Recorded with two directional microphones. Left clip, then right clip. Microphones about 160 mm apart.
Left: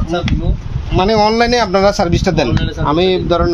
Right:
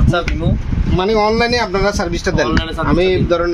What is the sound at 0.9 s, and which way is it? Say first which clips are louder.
Speech: left 3 dB; 80° left.